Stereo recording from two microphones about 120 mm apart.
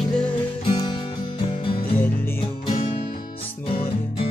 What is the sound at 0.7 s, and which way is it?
Music, 40° left (ahead or behind).